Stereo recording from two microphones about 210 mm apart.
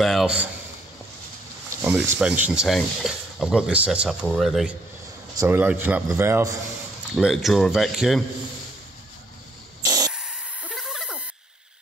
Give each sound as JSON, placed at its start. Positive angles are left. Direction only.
{"t": 0.0, "sound": "speech", "side_deg": 0}
{"t": 1.8, "sound": "speech", "side_deg": -5}
{"t": 5.3, "sound": "speech", "side_deg": -10}
{"t": 7.2, "sound": "speech", "side_deg": 0}
{"t": 9.8, "sound": "spray", "side_deg": -15}
{"t": 10.1, "sound": "a sound", "side_deg": -5}